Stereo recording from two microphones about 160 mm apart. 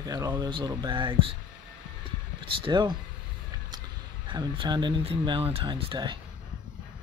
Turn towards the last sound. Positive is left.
turn(degrees=-30)  # may be behind; listen again after turning